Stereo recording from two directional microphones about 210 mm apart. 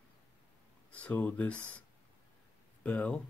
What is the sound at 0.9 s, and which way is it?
Speech, 5° left (ahead or behind).